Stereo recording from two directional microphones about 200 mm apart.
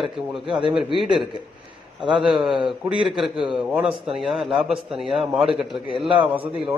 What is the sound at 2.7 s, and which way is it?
A man's voice, centre (ahead or behind).